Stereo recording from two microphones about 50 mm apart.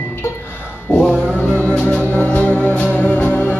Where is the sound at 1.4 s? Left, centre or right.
Left.